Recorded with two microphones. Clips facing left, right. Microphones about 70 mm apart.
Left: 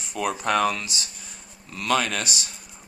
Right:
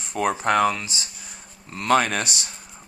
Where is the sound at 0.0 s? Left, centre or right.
Right.